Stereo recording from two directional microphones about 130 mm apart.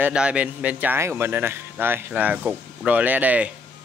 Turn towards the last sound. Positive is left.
turn(degrees=-10)  # may be behind; listen again after turning